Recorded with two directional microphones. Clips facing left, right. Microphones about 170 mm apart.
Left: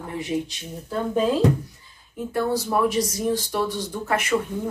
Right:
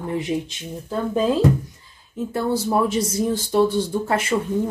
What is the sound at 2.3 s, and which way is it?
Speech, 25° right (ahead or behind).